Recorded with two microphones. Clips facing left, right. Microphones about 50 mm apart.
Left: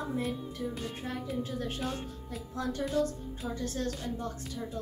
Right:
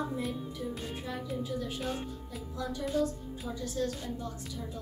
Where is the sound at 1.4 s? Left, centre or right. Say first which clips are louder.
Even; left.